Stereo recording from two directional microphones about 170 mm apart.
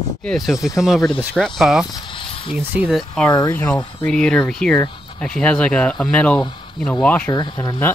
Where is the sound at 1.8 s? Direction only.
25° left (ahead or behind).